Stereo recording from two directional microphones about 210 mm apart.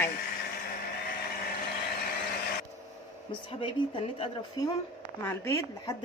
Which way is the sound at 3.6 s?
25° left (ahead or behind).